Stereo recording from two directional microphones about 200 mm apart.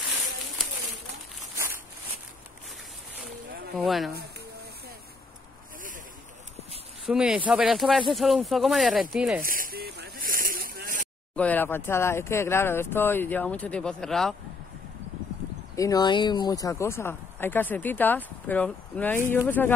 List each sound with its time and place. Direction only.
3.3 s boat: 50° right (ahead or behind)
3.7 s speech: centre (ahead or behind)
7.1 s speech: 5° right (ahead or behind)
9.4 s a sound: 45° right (ahead or behind)
11.3 s speech: 10° left (ahead or behind)
15.7 s speech: 15° left (ahead or behind)